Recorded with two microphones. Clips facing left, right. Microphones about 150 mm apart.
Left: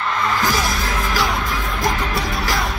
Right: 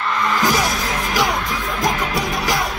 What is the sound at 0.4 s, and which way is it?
Music, 15° right (ahead or behind).